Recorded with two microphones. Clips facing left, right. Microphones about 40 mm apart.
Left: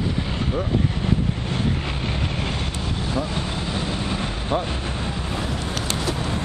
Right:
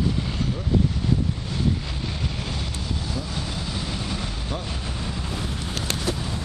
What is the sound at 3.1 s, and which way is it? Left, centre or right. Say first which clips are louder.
Vehicle: left 5 dB; left.